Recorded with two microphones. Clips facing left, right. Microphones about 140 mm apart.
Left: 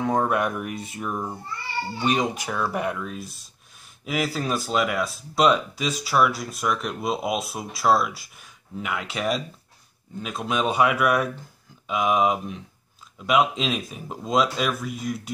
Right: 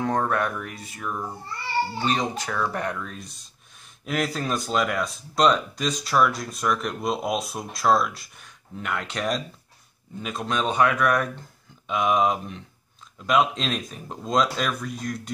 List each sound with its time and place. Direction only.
0.0 s speech: 10° left (ahead or behind)